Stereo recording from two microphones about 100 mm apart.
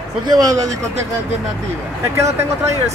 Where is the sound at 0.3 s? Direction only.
40° right (ahead or behind).